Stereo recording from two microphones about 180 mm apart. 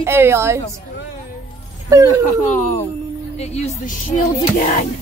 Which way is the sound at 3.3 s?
35° left (ahead or behind).